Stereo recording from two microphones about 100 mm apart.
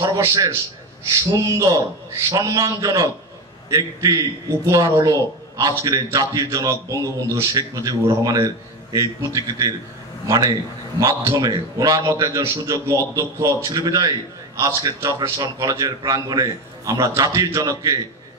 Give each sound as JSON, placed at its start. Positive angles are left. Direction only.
{"t": 0.0, "sound": "a man's voice", "side_deg": -35}